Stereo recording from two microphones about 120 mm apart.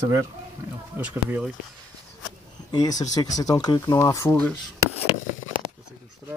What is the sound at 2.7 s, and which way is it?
Speech, 30° left (ahead or behind).